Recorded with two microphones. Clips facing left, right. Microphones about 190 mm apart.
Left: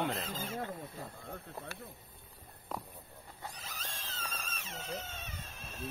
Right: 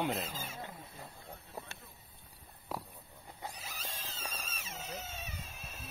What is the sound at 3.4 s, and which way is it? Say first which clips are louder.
Cat: right 1 dB; 10° right (ahead or behind).